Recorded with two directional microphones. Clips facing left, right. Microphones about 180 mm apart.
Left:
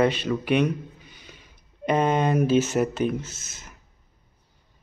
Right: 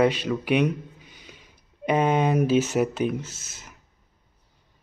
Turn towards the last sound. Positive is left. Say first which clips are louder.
# left 1 dB
turn(degrees=-15)  # may be behind; listen again after turning